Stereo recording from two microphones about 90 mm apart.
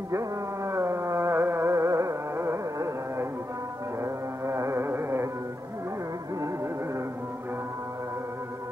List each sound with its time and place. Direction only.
0.7 s music: 30° right (ahead or behind)
4.0 s carnatic music: 35° right (ahead or behind)